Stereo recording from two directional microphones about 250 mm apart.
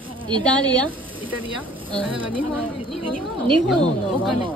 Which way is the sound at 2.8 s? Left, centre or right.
Centre.